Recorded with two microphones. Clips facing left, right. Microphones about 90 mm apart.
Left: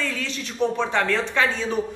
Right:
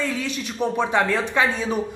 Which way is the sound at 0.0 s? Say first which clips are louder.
Right 3 dB; 15° right (ahead or behind).